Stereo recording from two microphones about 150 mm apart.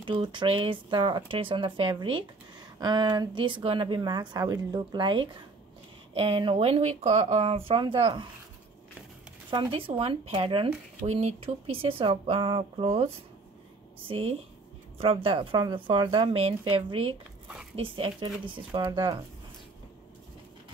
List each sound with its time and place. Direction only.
0.0 s speech: 35° right (ahead or behind)
9.5 s speech: 35° right (ahead or behind)
11.0 s speech: 50° right (ahead or behind); by 19.2 s 30° right (ahead or behind)